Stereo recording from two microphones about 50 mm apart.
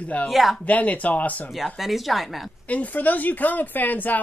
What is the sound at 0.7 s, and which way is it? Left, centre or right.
Speech, left.